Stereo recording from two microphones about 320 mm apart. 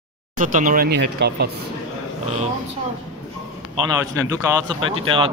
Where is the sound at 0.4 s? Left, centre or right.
Right.